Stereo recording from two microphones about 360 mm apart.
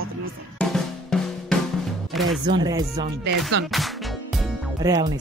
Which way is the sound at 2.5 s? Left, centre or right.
Centre.